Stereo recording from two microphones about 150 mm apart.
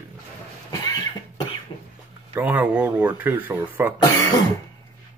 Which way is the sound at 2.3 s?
10° right (ahead or behind).